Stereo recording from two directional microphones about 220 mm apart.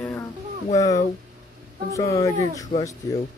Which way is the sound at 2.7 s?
35° left (ahead or behind).